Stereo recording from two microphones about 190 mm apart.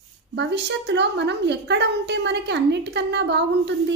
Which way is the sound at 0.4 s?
65° right (ahead or behind).